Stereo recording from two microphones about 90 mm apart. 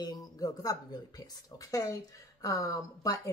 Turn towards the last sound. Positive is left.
turn(degrees=40)  # may be behind; listen again after turning